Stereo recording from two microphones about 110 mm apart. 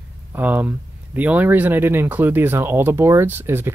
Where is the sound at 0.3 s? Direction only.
15° right (ahead or behind).